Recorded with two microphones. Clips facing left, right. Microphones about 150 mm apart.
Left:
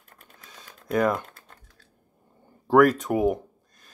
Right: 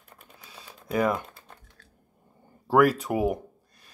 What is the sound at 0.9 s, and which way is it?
Speech, 5° right (ahead or behind).